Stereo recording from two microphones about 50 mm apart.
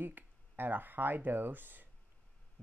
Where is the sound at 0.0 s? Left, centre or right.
Right.